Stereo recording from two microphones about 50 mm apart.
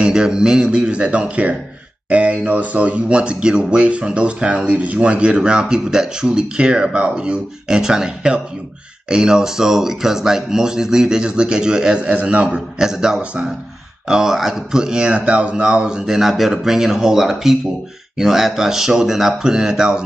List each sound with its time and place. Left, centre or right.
0.0 s speech: centre
16.2 s speech: centre